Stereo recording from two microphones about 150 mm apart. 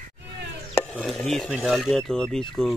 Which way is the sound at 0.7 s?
10° left (ahead or behind).